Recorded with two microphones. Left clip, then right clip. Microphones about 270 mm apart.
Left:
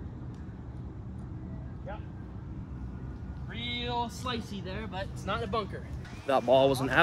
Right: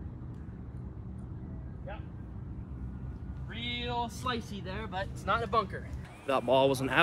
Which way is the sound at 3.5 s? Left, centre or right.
Centre.